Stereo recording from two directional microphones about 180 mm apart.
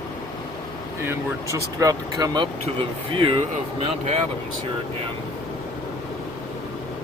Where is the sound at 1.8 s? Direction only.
20° right (ahead or behind).